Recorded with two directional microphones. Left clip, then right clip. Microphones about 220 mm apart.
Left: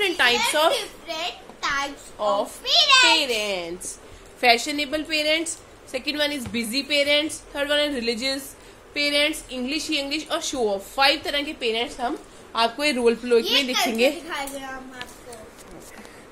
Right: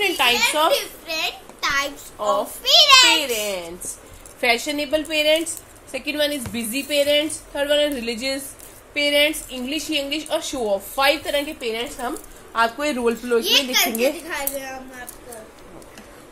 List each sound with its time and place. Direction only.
0.0 s a woman's voice: 10° left (ahead or behind)
0.7 s a sound: 5° right (ahead or behind)
3.2 s a woman's voice: 15° left (ahead or behind)